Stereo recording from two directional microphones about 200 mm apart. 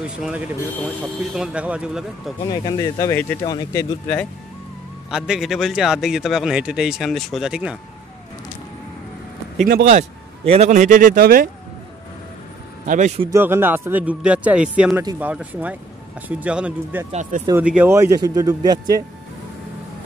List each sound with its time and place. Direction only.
0.0 s speech: 5° right (ahead or behind)
2.4 s speech: 20° left (ahead or behind)
5.1 s speech: 5° right (ahead or behind)
9.7 s a man's voice: 40° right (ahead or behind)
12.8 s a man's voice: 40° right (ahead or behind)
13.3 s a man's voice: 10° right (ahead or behind)
17.1 s a man's voice: 35° right (ahead or behind)
17.5 s a man's voice: 5° right (ahead or behind)